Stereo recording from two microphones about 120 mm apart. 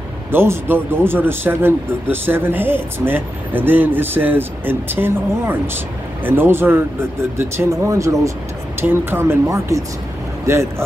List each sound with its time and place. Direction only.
0.3 s speech: 20° right (ahead or behind)